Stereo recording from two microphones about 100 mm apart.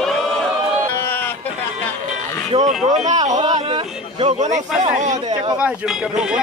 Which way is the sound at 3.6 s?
70° right (ahead or behind).